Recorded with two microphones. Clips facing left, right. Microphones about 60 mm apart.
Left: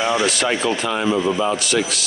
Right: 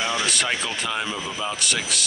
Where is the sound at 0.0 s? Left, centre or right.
Centre.